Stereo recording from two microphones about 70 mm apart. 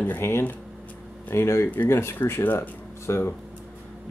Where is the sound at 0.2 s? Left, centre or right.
Left.